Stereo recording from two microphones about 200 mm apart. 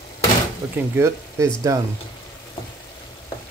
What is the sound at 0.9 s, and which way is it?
Speech, 15° right (ahead or behind).